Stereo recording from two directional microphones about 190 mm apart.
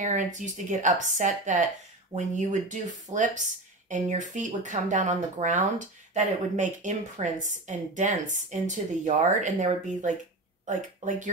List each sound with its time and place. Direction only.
0.0 s speech: 40° right (ahead or behind)